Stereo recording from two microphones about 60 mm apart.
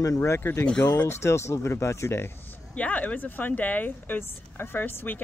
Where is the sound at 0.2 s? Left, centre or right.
Left.